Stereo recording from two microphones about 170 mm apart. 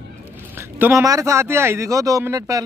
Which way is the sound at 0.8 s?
15° right (ahead or behind).